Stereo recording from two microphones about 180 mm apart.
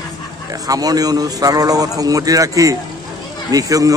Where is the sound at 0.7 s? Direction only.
20° right (ahead or behind).